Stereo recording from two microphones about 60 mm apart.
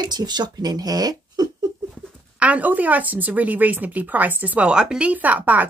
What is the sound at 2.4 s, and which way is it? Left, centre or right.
A woman's voice, right.